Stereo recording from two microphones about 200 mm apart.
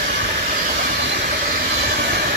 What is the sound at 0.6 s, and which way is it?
Vehicle, 45° right (ahead or behind).